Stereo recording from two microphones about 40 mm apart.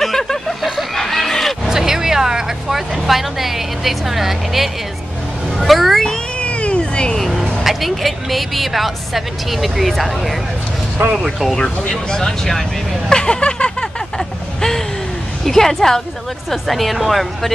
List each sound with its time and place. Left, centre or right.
0.0 s a sound: centre
1.7 s vehicle: centre
3.0 s a woman's voice: centre
6.4 s cat: left
7.2 s vehicle: centre
7.6 s a woman's voice: centre
11.9 s speech: centre
13.1 s a sound: left
15.4 s a woman's voice: centre